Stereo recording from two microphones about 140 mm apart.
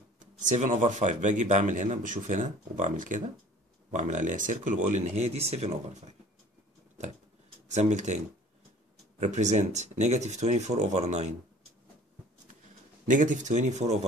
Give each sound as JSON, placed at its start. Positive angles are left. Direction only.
{"t": 0.2, "sound": "speech", "side_deg": -60}
{"t": 7.6, "sound": "speech", "side_deg": -55}
{"t": 9.2, "sound": "speech", "side_deg": -55}
{"t": 13.1, "sound": "speech", "side_deg": -65}